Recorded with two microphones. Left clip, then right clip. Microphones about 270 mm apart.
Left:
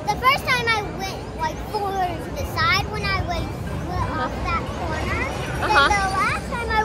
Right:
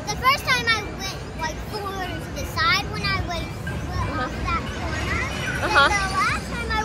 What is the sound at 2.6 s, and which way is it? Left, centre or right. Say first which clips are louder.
Speech: even; centre.